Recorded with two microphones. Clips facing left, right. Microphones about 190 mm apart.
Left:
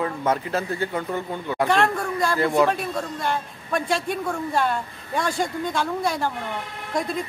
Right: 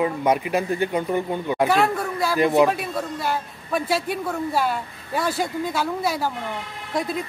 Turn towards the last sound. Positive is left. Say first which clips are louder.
# even
turn(degrees=0)  # may be behind; listen again after turning